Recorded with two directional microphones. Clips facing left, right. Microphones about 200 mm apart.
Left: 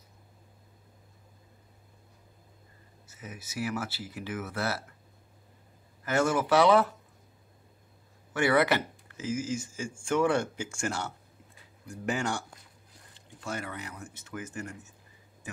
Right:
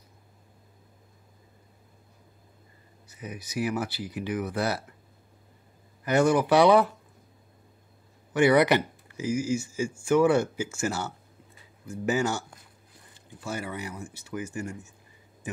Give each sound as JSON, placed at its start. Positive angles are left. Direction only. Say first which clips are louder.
{"t": 3.1, "sound": "speech", "louder": "right 5 dB", "side_deg": -15}
{"t": 6.0, "sound": "speech", "louder": "right 5 dB", "side_deg": -15}
{"t": 8.3, "sound": "speech", "louder": "right 5 dB", "side_deg": -15}